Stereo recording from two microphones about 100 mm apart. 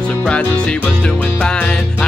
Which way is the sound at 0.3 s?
15° left (ahead or behind).